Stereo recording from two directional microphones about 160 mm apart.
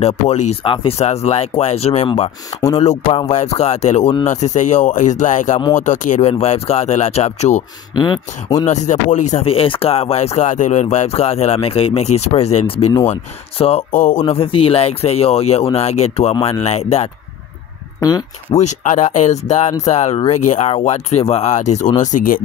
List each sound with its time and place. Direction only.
0.0 s speech: 45° left (ahead or behind)
7.9 s speech: 25° left (ahead or behind)
8.6 s speech: 50° left (ahead or behind)
18.0 s speech: 20° left (ahead or behind)
18.5 s speech: 45° left (ahead or behind)